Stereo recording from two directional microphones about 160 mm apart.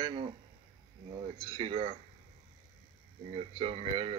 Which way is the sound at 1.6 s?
40° right (ahead or behind).